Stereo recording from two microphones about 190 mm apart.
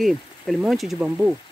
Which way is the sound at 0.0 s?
Centre (ahead or behind).